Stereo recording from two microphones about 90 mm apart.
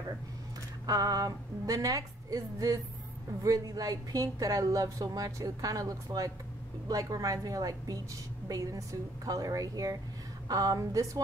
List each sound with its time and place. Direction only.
0.8 s a woman's voice: 45° right (ahead or behind)